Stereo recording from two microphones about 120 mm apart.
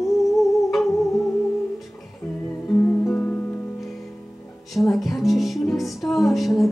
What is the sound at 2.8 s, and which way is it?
Music, 15° left (ahead or behind).